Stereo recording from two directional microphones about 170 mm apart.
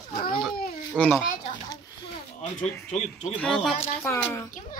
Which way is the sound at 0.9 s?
10° left (ahead or behind).